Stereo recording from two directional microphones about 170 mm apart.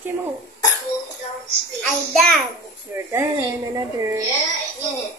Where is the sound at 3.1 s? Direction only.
15° right (ahead or behind).